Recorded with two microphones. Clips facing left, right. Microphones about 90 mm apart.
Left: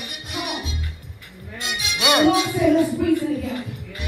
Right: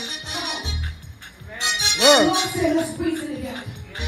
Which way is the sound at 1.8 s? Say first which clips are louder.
Right 3 dB; 70° right (ahead or behind).